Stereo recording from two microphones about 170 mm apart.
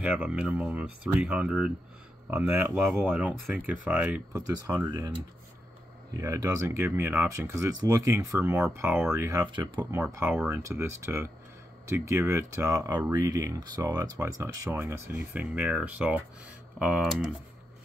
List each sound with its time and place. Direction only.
0.0 s speech: 5° right (ahead or behind)
2.6 s speech: centre (ahead or behind); by 5.1 s 20° right (ahead or behind)
6.1 s speech: 20° right (ahead or behind); by 17.2 s centre (ahead or behind)